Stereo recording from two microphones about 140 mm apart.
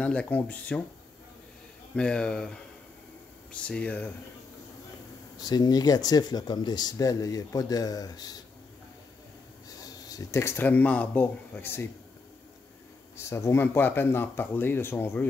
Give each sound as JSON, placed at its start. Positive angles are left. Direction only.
{"t": 0.0, "sound": "speech", "side_deg": 10}
{"t": 2.0, "sound": "speech", "side_deg": 5}
{"t": 3.6, "sound": "speech", "side_deg": 10}
{"t": 5.4, "sound": "speech", "side_deg": 30}
{"t": 10.0, "sound": "speech", "side_deg": 25}
{"t": 13.2, "sound": "speech", "side_deg": 20}